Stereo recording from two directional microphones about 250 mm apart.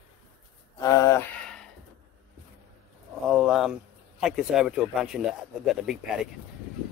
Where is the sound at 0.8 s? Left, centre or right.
Centre.